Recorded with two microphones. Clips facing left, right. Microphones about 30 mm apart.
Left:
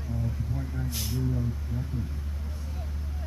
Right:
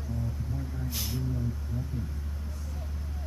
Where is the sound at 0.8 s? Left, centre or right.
Centre.